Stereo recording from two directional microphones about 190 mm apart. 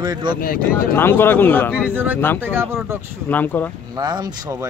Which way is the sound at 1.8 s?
10° right (ahead or behind).